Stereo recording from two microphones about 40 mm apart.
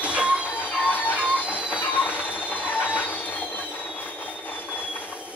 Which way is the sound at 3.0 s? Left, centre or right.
Left.